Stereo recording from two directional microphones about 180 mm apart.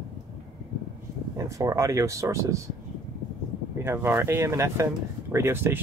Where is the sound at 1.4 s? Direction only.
15° right (ahead or behind).